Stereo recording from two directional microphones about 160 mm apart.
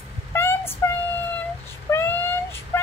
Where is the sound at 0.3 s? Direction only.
15° left (ahead or behind).